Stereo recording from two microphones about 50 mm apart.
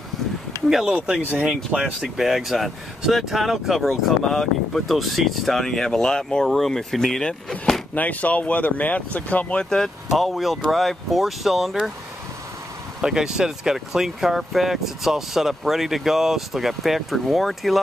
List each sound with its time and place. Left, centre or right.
0.8 s speech: centre
1.2 s speech: right
1.5 s speech: centre
2.0 s speech: centre
7.9 s speech: left
9.6 s speech: centre
10.1 s speech: centre
13.0 s speech: centre